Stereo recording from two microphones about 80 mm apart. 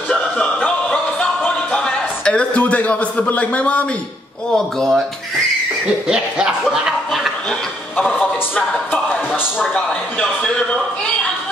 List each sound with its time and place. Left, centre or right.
0.4 s music: left
1.8 s a man's voice: centre
4.6 s speech: centre
6.0 s speech: centre
8.1 s speech: left
9.3 s speech: centre
9.8 s speech: centre